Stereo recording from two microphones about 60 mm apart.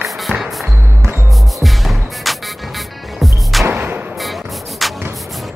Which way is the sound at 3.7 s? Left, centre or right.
Right.